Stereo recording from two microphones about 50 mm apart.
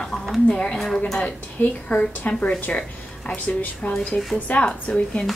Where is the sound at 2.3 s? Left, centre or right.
Centre.